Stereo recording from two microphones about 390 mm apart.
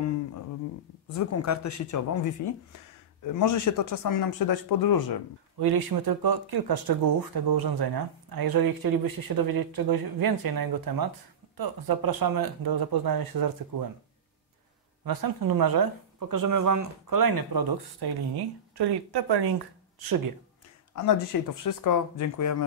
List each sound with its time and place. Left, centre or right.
1.0 s speech: left
4.3 s speech: left
5.6 s speech: right
15.0 s speech: right
20.0 s speech: right
20.9 s speech: left